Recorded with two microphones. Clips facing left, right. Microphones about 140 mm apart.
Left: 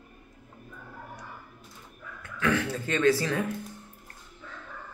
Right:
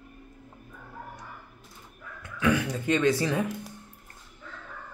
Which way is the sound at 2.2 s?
15° right (ahead or behind).